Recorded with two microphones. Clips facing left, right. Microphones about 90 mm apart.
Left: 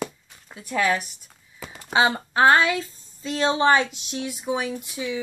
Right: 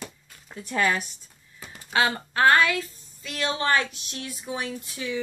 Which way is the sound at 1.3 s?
90° left.